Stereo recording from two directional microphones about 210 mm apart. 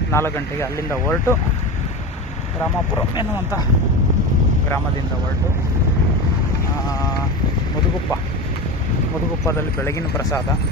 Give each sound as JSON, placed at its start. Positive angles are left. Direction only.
{"t": 0.1, "sound": "speech", "side_deg": 10}
{"t": 9.5, "sound": "speech", "side_deg": 10}